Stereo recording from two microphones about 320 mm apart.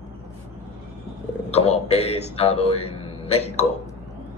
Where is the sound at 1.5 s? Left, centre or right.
Centre.